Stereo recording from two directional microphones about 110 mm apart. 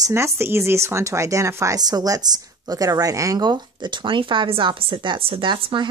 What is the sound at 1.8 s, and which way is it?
Speech, 35° right (ahead or behind).